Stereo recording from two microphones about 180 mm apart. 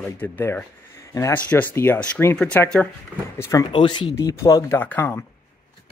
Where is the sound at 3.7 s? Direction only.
25° left (ahead or behind).